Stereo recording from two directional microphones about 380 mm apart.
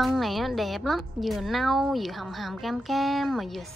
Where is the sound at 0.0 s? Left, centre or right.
Centre.